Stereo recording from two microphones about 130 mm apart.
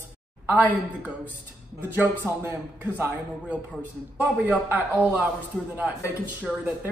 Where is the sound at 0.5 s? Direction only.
15° right (ahead or behind).